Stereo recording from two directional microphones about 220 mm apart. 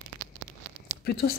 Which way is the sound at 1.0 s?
45° left (ahead or behind).